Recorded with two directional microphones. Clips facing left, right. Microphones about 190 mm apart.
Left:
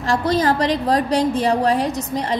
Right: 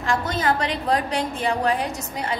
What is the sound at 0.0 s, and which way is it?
A woman's voice, 35° left (ahead or behind).